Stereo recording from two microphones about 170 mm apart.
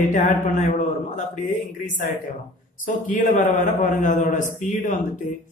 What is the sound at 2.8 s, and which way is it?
A man's voice, 50° left (ahead or behind).